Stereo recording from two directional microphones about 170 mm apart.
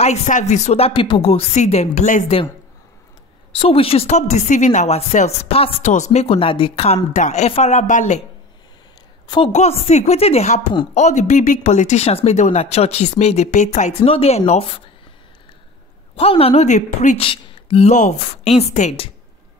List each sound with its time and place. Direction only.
0.0 s speech: 45° left (ahead or behind)
3.5 s speech: 35° left (ahead or behind)
9.5 s speech: 40° left (ahead or behind)
16.2 s speech: 35° left (ahead or behind)